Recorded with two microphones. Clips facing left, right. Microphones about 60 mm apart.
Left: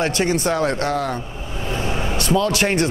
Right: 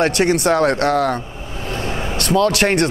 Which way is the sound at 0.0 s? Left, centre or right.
Right.